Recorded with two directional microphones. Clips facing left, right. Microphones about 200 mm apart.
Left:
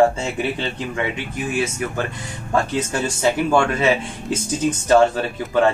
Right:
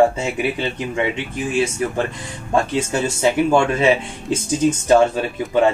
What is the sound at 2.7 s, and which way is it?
Speech, 25° right (ahead or behind).